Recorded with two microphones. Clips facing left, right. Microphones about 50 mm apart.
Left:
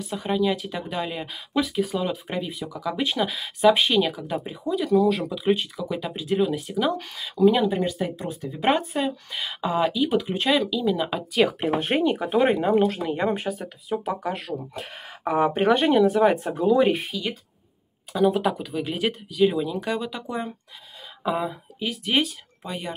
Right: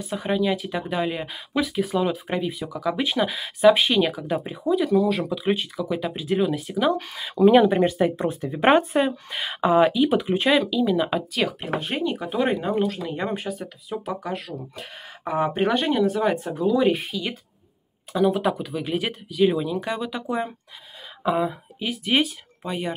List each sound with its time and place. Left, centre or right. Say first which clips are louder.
0.0 s speech: even; centre
7.2 s speech: right 4 dB; right
9.8 s speech: right 3 dB; centre
11.3 s speech: left 4 dB; centre
12.0 s speech: left 3 dB; left
15.2 s speech: left 2 dB; centre
16.9 s speech: right 1 dB; centre